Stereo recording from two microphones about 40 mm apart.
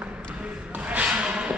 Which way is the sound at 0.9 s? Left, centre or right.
Right.